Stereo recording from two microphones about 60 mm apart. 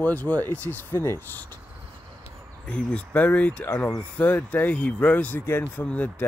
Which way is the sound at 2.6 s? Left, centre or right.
Centre.